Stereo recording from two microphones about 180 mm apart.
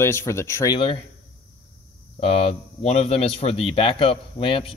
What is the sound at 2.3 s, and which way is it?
Speech, 30° left (ahead or behind).